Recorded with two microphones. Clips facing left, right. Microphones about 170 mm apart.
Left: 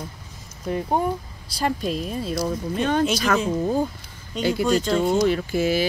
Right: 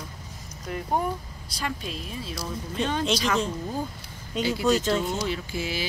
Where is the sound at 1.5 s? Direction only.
40° left (ahead or behind).